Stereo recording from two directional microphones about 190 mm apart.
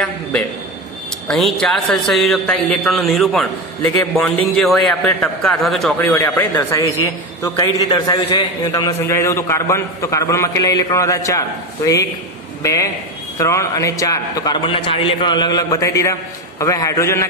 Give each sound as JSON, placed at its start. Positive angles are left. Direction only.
{"t": 1.2, "sound": "a man's voice", "side_deg": 5}
{"t": 4.6, "sound": "a man's voice", "side_deg": 0}
{"t": 6.0, "sound": "a man's voice", "side_deg": 15}